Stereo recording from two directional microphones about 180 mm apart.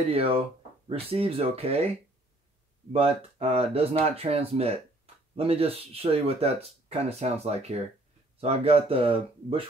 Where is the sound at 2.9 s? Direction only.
35° right (ahead or behind).